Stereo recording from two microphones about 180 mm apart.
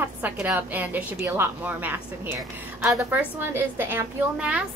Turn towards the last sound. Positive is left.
turn(degrees=-5)  # may be behind; listen again after turning